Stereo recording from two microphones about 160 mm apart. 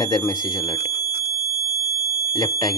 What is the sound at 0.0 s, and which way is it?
Speech, 25° left (ahead or behind).